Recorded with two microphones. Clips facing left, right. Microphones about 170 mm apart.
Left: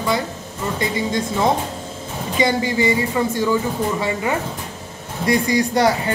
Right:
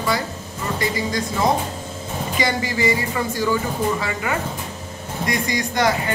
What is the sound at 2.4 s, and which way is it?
A woman's voice, 25° left (ahead or behind).